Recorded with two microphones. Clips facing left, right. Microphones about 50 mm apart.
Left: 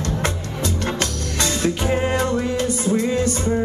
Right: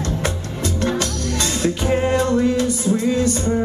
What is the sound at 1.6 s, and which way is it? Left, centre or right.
Music, left.